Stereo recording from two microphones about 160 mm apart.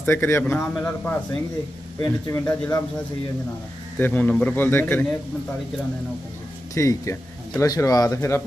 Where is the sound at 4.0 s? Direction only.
10° left (ahead or behind).